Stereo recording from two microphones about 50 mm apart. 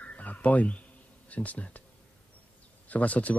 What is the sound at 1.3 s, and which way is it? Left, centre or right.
Speech, left.